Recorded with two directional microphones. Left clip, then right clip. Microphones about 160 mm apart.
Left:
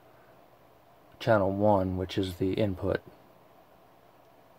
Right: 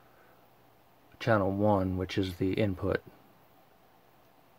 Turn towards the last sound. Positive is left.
turn(degrees=-20)  # may be behind; listen again after turning